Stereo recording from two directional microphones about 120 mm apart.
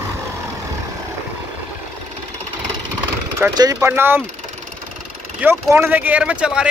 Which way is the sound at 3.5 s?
35° right (ahead or behind).